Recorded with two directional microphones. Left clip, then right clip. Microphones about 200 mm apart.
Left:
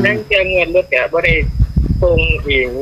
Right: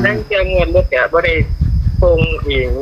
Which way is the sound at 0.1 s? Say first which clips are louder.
Left 2 dB; 15° left (ahead or behind).